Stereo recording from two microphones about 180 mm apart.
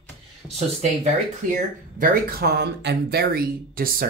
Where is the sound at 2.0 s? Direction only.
55° right (ahead or behind).